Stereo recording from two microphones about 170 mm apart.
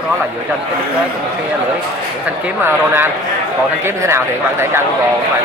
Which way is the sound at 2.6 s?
15° right (ahead or behind).